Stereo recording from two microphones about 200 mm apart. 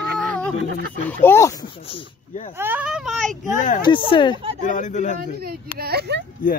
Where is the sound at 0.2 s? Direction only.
5° left (ahead or behind).